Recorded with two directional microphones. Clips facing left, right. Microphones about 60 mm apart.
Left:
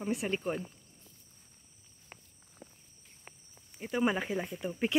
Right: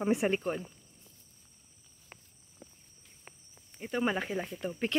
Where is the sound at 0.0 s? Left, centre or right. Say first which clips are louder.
Right 6 dB; right.